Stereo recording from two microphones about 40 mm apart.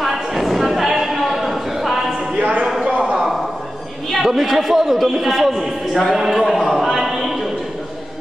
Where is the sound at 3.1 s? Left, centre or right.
Centre.